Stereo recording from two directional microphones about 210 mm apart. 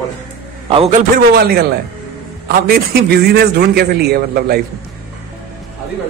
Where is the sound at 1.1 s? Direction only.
45° right (ahead or behind).